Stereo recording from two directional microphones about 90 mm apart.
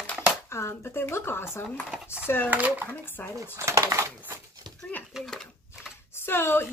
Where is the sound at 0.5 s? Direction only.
30° left (ahead or behind).